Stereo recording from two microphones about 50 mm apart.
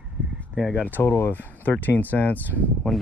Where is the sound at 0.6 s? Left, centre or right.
Centre.